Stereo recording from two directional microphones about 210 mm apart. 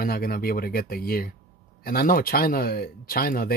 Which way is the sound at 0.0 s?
45° left (ahead or behind).